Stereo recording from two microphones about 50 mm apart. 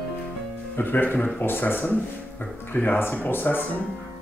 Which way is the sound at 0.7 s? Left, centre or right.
Left.